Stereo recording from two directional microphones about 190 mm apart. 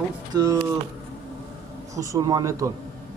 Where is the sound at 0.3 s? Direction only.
20° right (ahead or behind).